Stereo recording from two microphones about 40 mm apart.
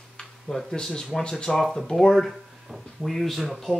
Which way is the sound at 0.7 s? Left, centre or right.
Centre.